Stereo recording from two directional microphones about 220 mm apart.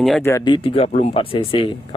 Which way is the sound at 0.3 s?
20° left (ahead or behind).